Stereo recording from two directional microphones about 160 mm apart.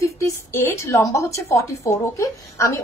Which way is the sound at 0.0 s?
15° left (ahead or behind).